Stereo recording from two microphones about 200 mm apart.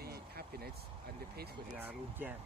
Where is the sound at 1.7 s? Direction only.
10° right (ahead or behind).